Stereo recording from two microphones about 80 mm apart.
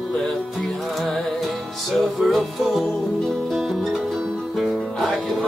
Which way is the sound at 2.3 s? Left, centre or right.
Centre.